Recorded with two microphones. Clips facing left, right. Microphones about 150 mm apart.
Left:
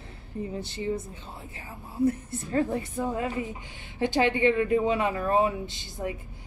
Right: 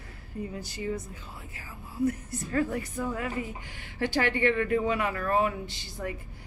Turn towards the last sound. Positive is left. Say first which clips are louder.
# left 2 dB
turn(degrees=20)  # may be behind; listen again after turning